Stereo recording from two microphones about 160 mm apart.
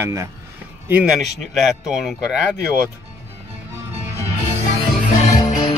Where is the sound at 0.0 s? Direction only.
15° right (ahead or behind).